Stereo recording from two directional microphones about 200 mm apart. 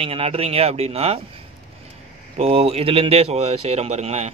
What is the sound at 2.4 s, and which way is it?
Speech, 30° right (ahead or behind).